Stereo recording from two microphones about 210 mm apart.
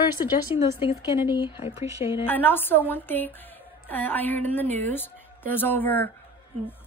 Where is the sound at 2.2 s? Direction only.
10° left (ahead or behind).